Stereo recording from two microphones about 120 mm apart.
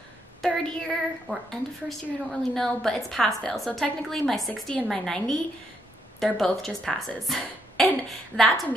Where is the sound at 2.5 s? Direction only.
5° left (ahead or behind).